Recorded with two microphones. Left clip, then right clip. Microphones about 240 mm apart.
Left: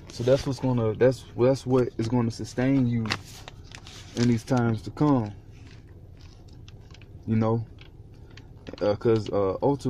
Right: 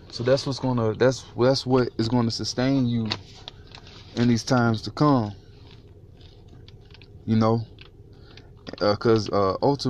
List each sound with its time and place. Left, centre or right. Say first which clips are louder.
0.7 s speech: right 1 dB; centre
4.1 s speech: right 3 dB; centre
7.2 s speech: right 4 dB; centre
8.6 s speech: right 3 dB; centre